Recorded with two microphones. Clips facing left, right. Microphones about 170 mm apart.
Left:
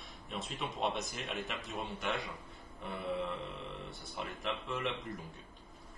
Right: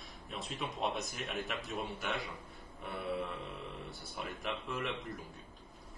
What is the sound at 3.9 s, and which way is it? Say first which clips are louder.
A man's voice: even; centre (ahead or behind).